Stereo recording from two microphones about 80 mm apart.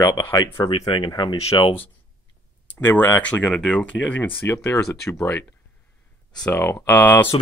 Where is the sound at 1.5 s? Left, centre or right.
Left.